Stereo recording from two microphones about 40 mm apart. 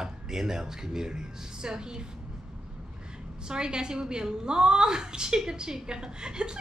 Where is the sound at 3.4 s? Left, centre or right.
Centre.